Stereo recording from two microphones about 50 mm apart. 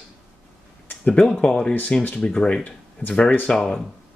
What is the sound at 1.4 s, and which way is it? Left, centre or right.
A man's voice, centre.